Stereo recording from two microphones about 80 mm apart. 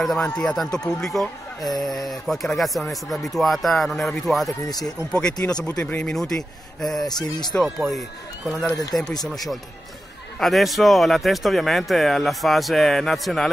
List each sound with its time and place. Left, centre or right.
0.0 s speech: centre
5.1 s speech: centre
6.1 s speech: centre
7.1 s speech: left
8.9 s speech: centre